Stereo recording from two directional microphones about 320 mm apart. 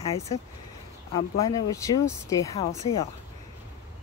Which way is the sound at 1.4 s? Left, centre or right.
Centre.